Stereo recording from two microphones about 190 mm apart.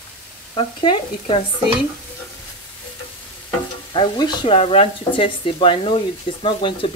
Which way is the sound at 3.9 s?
25° left (ahead or behind).